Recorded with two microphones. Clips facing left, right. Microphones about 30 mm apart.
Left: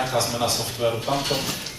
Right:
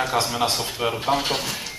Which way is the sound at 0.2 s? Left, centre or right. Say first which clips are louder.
Right 1 dB; centre.